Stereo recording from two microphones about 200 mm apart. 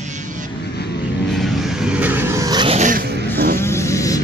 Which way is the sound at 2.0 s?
10° right (ahead or behind).